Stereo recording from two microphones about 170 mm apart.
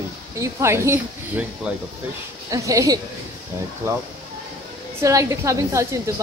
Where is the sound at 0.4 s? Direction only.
15° right (ahead or behind).